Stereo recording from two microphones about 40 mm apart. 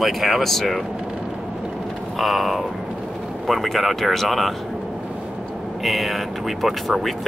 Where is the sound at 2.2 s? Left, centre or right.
Centre.